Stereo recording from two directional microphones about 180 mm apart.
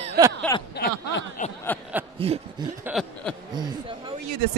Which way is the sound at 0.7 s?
60° left (ahead or behind).